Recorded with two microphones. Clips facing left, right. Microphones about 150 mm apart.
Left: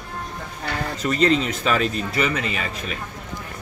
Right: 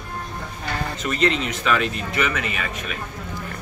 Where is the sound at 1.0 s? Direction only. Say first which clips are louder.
Left 3 dB; 35° left (ahead or behind).